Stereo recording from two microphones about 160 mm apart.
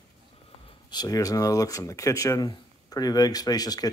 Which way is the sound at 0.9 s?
25° left (ahead or behind).